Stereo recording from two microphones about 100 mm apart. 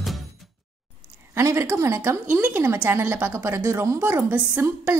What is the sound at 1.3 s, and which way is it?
A woman's voice, 30° right (ahead or behind).